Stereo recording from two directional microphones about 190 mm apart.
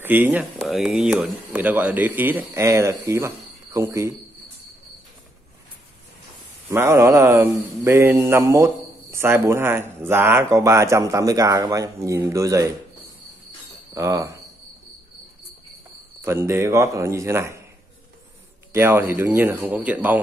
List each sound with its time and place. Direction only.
0.0 s speech: 10° right (ahead or behind)
6.7 s speech: 15° right (ahead or behind)
13.9 s speech: 15° right (ahead or behind)
16.3 s speech: 15° right (ahead or behind)
18.7 s speech: 10° right (ahead or behind)